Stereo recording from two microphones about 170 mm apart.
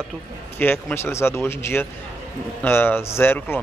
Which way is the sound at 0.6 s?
10° left (ahead or behind).